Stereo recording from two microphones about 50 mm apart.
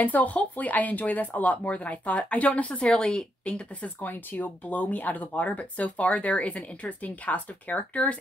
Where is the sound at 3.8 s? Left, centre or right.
Left.